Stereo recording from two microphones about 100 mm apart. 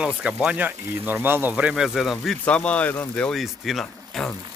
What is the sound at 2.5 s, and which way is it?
Speech, 10° left (ahead or behind).